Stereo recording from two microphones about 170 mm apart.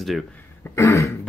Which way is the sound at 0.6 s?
15° left (ahead or behind).